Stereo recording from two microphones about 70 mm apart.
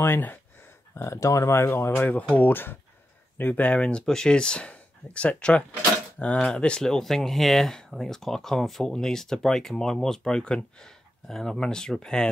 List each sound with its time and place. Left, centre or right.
0.0 s speech: left
0.9 s speech: left
2.0 s speech: left